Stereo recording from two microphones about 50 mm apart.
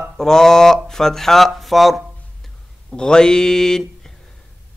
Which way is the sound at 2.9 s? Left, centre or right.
Centre.